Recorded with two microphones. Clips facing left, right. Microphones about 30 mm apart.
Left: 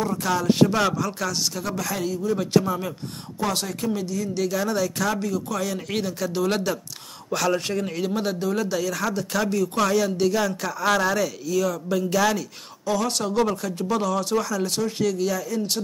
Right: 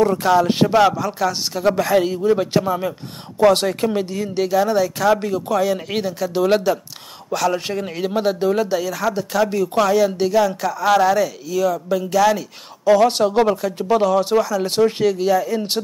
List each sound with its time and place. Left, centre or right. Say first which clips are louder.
0.1 s speech: right 7 dB; right
0.7 s speech: right 8 dB; centre
1.6 s speech: right 11 dB; right
2.3 s speech: right 3 dB; right
3.3 s speech: right 12 dB; right
4.5 s speech: right 10 dB; centre
5.1 s speech: right 8 dB; right
5.6 s speech: right 7 dB; centre
7.6 s speech: right 3 dB; centre
12.8 s speech: right 10 dB; right